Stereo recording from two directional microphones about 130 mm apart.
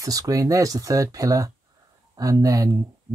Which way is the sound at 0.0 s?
25° right (ahead or behind).